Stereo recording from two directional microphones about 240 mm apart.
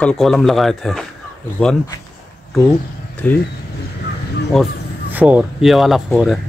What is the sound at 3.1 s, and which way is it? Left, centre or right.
Speech, centre.